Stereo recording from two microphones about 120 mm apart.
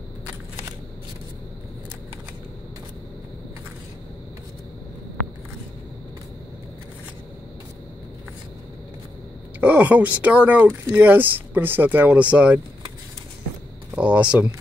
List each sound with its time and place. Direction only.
9.6 s speech: 15° right (ahead or behind)
13.9 s speech: 10° right (ahead or behind)